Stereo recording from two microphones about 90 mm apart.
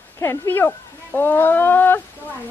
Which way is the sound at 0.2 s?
25° left (ahead or behind).